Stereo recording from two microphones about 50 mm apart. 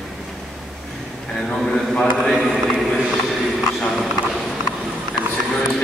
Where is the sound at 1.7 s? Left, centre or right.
Centre.